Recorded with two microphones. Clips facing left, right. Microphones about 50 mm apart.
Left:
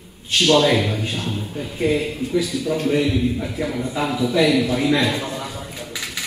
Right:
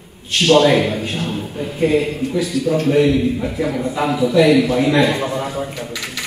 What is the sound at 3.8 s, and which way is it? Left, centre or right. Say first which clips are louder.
Speech: right 4 dB; right.